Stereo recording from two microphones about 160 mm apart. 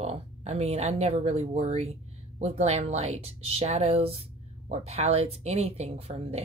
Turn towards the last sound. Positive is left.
turn(degrees=-40)  # may be behind; listen again after turning